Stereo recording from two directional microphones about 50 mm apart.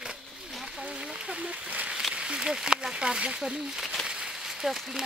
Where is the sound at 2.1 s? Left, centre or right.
Centre.